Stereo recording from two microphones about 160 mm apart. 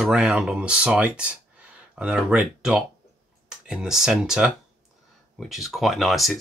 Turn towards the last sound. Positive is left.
turn(degrees=0)  # may be behind; listen again after turning